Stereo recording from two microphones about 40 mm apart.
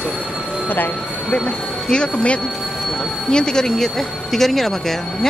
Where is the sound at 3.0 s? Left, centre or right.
Centre.